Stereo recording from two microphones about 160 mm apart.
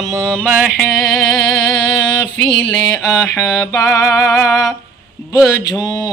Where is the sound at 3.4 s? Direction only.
20° left (ahead or behind).